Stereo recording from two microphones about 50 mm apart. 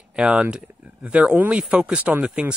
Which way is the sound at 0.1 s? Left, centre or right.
Centre.